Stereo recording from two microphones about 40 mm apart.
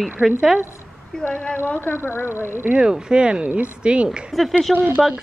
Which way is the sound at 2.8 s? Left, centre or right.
Right.